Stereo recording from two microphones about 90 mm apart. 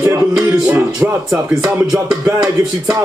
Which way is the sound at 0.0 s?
35° right (ahead or behind).